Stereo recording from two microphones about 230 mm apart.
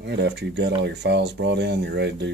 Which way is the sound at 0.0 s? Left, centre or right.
Right.